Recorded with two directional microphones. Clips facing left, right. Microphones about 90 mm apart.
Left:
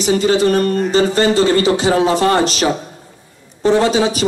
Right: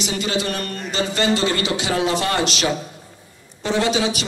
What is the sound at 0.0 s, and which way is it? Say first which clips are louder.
A man's voice: left 10 dB; 40° left (ahead or behind).